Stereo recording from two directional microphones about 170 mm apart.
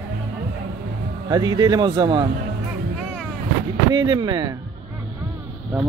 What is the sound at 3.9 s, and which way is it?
Speech, 25° right (ahead or behind).